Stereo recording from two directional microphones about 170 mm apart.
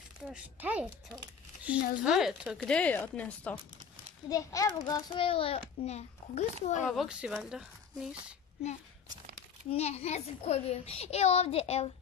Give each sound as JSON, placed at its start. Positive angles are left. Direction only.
{"t": 0.3, "sound": "speech", "side_deg": -10}
{"t": 2.0, "sound": "speech", "side_deg": -5}
{"t": 4.3, "sound": "a child's voice", "side_deg": 20}
{"t": 6.9, "sound": "speech", "side_deg": 0}
{"t": 9.7, "sound": "a child's voice", "side_deg": 40}